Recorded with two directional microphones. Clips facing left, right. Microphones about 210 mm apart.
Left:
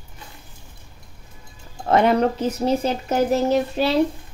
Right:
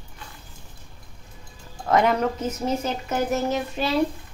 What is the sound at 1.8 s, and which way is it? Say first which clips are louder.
Speech: left 3 dB; 30° left (ahead or behind).